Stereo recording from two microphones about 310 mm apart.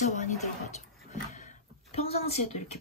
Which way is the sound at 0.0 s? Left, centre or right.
Left.